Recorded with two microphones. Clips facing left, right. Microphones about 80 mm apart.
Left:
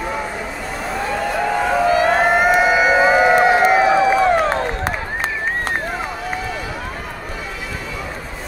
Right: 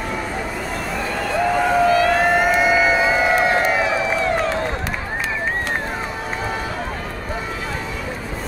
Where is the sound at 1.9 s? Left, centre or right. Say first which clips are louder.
Left 1 dB; left.